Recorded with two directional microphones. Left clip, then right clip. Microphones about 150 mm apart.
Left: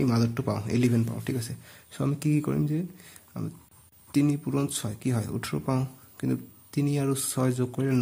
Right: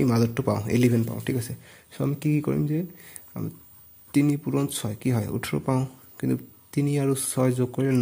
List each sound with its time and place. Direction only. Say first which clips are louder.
0.0 s speech: right 4 dB; 25° right (ahead or behind)
1.9 s speech: right 2 dB; 10° right (ahead or behind)